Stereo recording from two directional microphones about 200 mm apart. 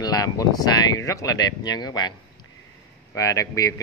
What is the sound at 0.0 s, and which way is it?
Speech, 20° left (ahead or behind).